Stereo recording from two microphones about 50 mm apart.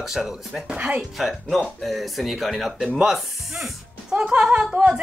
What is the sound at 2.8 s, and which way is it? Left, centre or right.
A woman's voice, centre.